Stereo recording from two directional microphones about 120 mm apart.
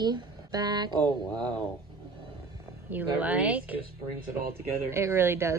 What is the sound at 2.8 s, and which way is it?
Speech, 15° right (ahead or behind).